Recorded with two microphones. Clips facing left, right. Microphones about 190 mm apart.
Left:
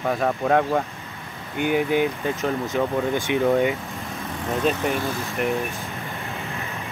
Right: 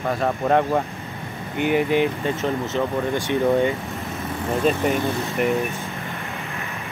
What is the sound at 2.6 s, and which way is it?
Speech, 15° left (ahead or behind).